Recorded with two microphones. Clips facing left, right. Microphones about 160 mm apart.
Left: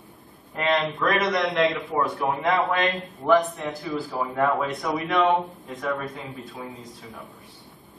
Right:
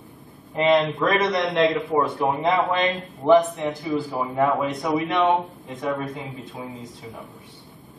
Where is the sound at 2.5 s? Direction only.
Centre (ahead or behind).